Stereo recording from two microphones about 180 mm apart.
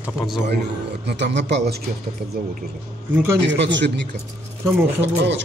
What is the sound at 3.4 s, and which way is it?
Speech, 80° right.